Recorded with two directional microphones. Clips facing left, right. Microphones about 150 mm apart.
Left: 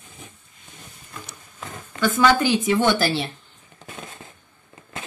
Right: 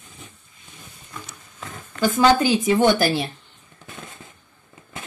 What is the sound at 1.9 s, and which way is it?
Speech, 35° right (ahead or behind).